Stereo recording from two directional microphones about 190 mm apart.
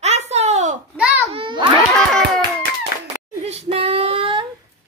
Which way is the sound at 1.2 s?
30° right (ahead or behind).